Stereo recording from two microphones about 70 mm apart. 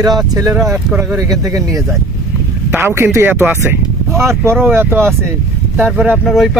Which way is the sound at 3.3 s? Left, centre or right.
Right.